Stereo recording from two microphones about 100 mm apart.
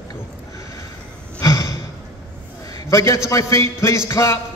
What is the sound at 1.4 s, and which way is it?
Sigh, 35° left (ahead or behind).